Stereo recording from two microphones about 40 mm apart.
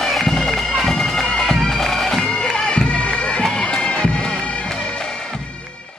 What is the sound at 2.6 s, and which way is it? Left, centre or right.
Bagpipes, left.